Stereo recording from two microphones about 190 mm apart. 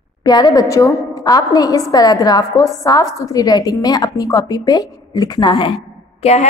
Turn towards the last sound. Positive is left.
turn(degrees=35)  # may be behind; listen again after turning